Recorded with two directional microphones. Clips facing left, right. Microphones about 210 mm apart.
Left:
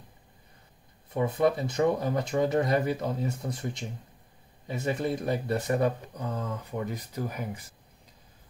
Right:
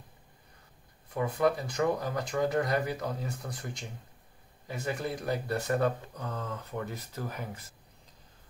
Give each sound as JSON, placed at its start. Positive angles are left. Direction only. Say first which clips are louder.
{"t": 1.1, "sound": "speech", "louder": "left 3 dB", "side_deg": 25}